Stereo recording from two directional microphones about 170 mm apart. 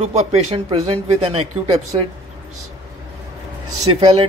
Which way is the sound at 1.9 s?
35° right (ahead or behind).